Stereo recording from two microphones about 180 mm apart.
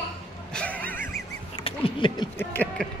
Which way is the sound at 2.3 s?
10° left (ahead or behind).